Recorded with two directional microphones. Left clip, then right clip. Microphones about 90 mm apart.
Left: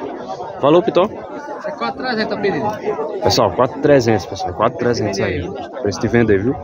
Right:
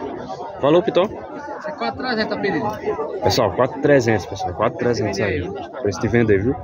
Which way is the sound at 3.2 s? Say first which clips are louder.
Left 3 dB; 25° left (ahead or behind).